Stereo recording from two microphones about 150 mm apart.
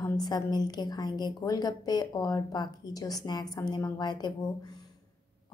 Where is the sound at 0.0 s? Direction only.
25° left (ahead or behind).